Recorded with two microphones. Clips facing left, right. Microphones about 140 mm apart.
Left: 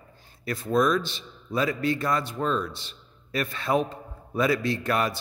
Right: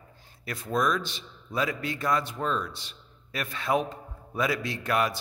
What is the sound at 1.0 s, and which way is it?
A man's voice, 10° right (ahead or behind).